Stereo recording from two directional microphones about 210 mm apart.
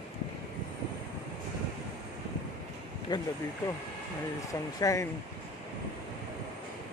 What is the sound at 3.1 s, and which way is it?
Speech, 20° left (ahead or behind).